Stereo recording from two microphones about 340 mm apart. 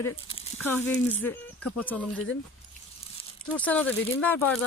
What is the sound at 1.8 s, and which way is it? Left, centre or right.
Speech, centre.